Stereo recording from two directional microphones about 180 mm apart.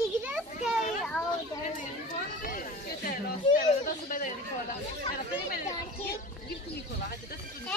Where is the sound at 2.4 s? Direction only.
50° left (ahead or behind).